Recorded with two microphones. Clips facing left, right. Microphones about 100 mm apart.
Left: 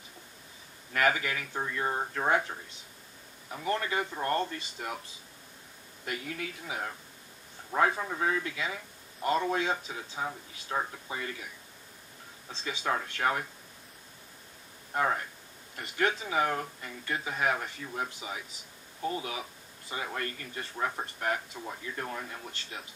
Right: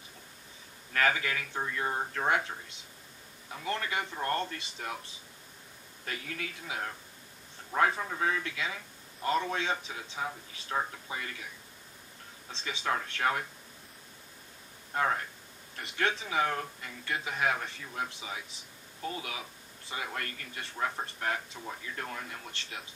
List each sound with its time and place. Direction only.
0.9 s a man's voice: 10° left (ahead or behind)
6.0 s a man's voice: 5° left (ahead or behind)
12.4 s speech: 10° left (ahead or behind)
15.0 s a man's voice: 5° left (ahead or behind)
20.1 s a man's voice: 10° left (ahead or behind)